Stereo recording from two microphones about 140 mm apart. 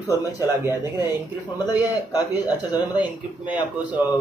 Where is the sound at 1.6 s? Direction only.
30° left (ahead or behind).